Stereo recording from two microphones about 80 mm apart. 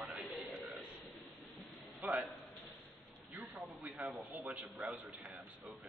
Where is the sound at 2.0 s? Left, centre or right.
Centre.